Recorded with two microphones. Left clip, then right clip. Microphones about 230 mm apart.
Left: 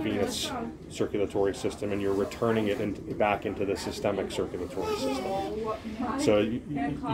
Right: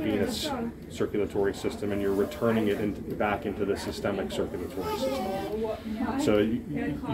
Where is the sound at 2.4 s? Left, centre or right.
Left.